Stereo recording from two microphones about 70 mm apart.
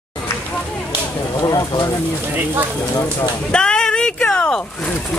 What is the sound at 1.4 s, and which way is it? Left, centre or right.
Speech, left.